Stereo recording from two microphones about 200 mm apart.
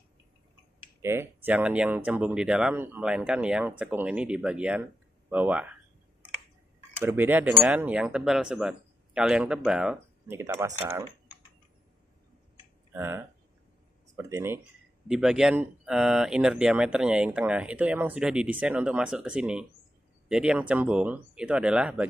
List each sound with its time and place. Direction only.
1.0 s speech: 10° right (ahead or behind)
7.0 s speech: 10° right (ahead or behind)
12.9 s speech: 10° right (ahead or behind)